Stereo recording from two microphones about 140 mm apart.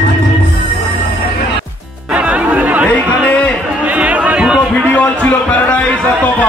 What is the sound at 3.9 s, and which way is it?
Chatter, 10° right (ahead or behind).